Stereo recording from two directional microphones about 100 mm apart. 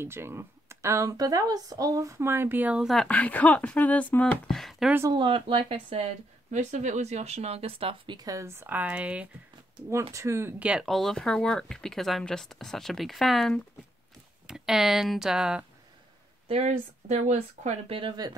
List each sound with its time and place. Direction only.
0.0 s speech: 25° right (ahead or behind)
2.8 s speech: centre (ahead or behind)
3.1 s speech: 15° left (ahead or behind)
4.5 s speech: centre (ahead or behind)
5.1 s speech: 60° right (ahead or behind)
7.0 s speech: 90° right; by 8.2 s 65° right (ahead or behind)
8.2 s speech: 35° right (ahead or behind); by 9.3 s 15° right (ahead or behind)
10.1 s speech: 30° right (ahead or behind)
10.6 s speech: 10° right (ahead or behind)
10.9 s speech: 5° left (ahead or behind)
16.4 s speech: 75° right (ahead or behind)